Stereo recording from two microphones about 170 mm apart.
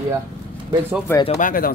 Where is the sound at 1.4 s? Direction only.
55° left (ahead or behind).